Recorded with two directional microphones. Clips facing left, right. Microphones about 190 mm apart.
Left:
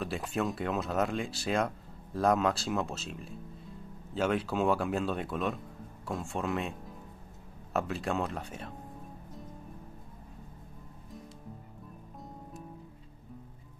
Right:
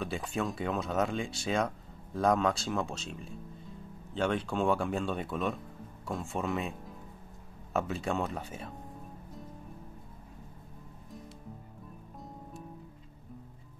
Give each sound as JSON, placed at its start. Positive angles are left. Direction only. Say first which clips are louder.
{"t": 0.0, "sound": "speech", "louder": "left 1 dB", "side_deg": 0}
{"t": 7.7, "sound": "speech", "louder": "even", "side_deg": 0}